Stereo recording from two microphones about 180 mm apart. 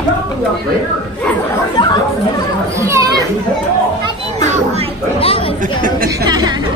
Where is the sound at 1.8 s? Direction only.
25° left (ahead or behind).